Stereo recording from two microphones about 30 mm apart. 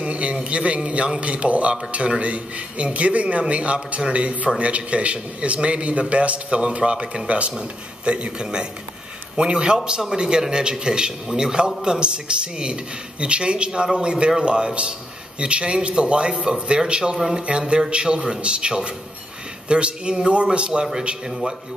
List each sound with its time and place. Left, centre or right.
0.0 s a man's voice: right
6.9 s a man's voice: right
7.2 s a man's voice: right
17.7 s a man's voice: right
21.3 s a man's voice: centre